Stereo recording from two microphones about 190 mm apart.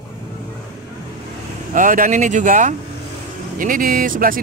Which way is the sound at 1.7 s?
45° right (ahead or behind).